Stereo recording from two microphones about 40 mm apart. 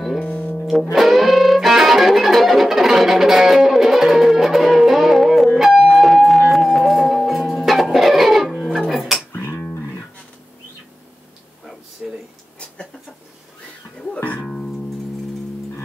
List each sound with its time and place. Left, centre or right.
0.2 s music: left
0.7 s music: centre
8.9 s dog: centre
12.0 s a sound: centre
13.9 s music: left